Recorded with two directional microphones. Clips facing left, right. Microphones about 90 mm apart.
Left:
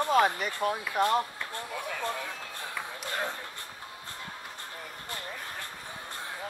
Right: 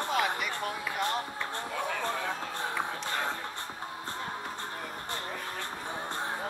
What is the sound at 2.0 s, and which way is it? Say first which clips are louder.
Speech: right 2 dB; 35° right (ahead or behind).